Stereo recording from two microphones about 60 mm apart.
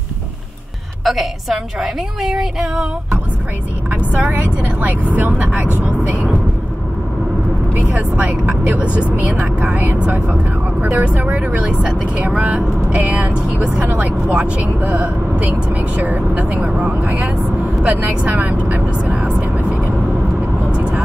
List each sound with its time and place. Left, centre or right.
1.0 s a woman's voice: centre
3.9 s speech: right
7.7 s speech: right
12.5 s speech: right
19.1 s speech: centre
19.4 s vehicle: right
20.7 s vehicle: centre